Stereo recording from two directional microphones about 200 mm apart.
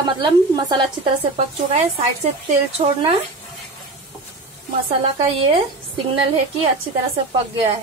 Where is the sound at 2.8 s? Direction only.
30° right (ahead or behind).